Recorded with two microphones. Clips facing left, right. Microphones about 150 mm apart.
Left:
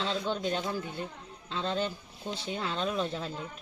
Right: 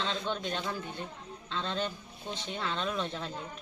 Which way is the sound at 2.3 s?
5° left (ahead or behind).